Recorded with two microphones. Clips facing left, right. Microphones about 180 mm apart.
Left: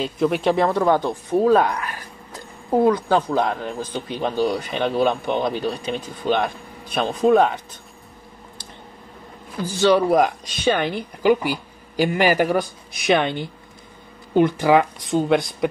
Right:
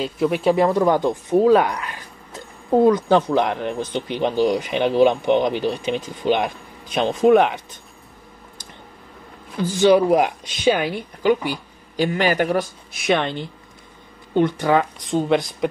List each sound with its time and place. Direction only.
0.0 s a woman's voice: centre (ahead or behind)
0.6 s speech: 15° right (ahead or behind)
9.7 s a woman's voice: 15° right (ahead or behind)